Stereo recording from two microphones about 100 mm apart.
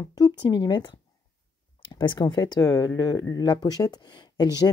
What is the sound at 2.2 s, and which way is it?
Speech, 40° left (ahead or behind).